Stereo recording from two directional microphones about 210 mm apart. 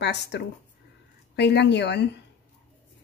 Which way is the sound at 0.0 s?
55° left (ahead or behind).